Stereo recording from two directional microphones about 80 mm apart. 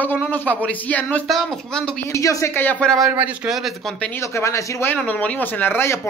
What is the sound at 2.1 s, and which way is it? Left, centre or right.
Speech, left.